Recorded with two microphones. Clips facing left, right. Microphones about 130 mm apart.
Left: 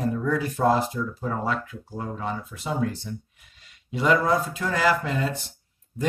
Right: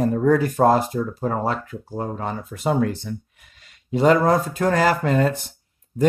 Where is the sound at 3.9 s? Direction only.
40° right (ahead or behind).